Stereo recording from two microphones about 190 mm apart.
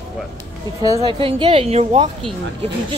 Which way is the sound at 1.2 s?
30° right (ahead or behind).